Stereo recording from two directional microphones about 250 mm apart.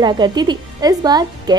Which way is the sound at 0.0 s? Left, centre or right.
Centre.